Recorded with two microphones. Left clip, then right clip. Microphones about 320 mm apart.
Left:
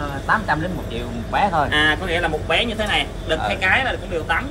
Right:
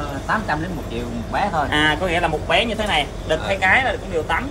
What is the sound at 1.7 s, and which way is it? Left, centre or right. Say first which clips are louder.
Speech: even; right.